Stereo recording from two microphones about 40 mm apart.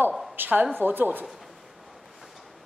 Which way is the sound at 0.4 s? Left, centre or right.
Right.